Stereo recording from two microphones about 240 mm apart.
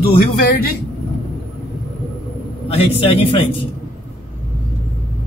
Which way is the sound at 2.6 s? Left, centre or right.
Left.